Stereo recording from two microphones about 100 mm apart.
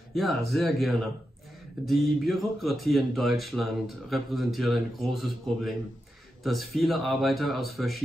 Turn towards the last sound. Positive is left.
turn(degrees=0)  # may be behind; listen again after turning